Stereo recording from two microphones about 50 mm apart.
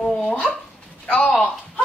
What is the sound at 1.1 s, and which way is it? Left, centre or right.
Speech, left.